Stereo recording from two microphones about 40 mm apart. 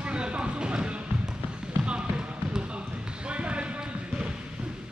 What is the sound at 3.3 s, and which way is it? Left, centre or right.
Basketball bounce, right.